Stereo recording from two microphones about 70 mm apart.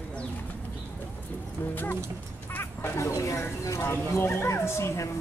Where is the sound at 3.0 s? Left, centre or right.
Left.